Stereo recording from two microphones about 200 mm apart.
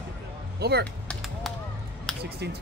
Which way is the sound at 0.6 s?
55° right (ahead or behind).